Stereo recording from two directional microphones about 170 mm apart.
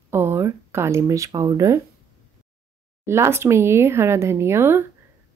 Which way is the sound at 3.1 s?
15° right (ahead or behind).